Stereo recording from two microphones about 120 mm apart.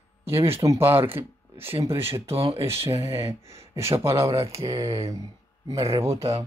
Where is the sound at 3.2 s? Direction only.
25° right (ahead or behind).